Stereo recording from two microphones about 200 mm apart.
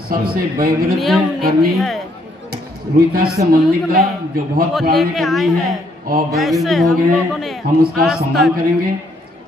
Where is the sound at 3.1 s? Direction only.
50° right (ahead or behind).